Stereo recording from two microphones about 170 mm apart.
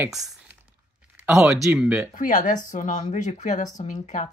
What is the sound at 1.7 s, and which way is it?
Speech, 5° right (ahead or behind).